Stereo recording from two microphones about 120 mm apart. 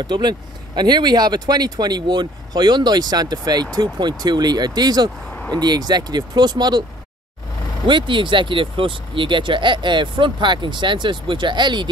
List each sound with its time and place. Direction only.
0.0 s speech: 35° right (ahead or behind)
7.8 s speech: 40° right (ahead or behind)